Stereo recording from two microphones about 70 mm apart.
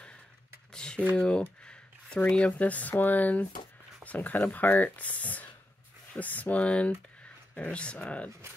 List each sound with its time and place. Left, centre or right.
0.7 s typing: centre
1.1 s speech: centre